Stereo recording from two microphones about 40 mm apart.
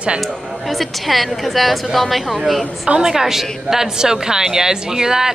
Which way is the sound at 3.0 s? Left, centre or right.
Centre.